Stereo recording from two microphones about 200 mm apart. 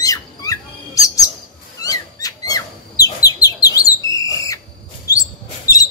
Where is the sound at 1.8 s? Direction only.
15° left (ahead or behind).